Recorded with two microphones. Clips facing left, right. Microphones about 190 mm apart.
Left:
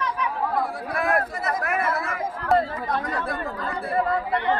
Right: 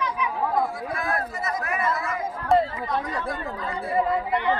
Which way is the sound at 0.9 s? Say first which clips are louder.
Left 4 dB; 70° left (ahead or behind).